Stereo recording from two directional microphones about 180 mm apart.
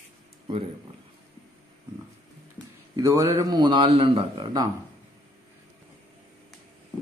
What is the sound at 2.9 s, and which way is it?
A man's voice, 15° right (ahead or behind).